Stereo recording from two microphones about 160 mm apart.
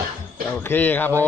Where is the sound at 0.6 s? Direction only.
10° left (ahead or behind).